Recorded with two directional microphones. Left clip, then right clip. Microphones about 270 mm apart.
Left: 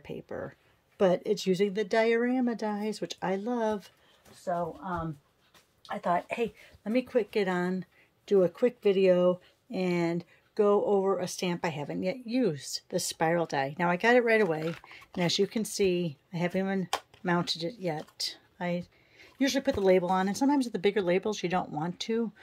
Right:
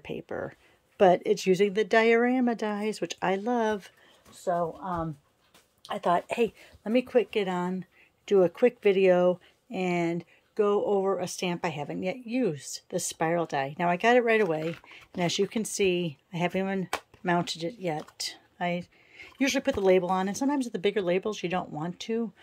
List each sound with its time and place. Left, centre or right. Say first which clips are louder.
0.0 s speech: right 4 dB; centre
4.5 s speech: right 3 dB; right; by 22.2 s centre